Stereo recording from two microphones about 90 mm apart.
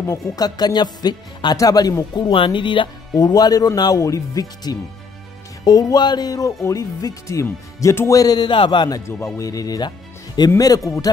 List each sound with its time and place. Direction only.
0.0 s speech: 45° left (ahead or behind)
2.3 s speech: 70° left (ahead or behind)
3.2 s speech: 45° left (ahead or behind)
8.2 s speech: 50° left (ahead or behind)
9.0 s speech: 35° left (ahead or behind); by 10.5 s 55° left (ahead or behind)
10.9 s speech: 40° left (ahead or behind)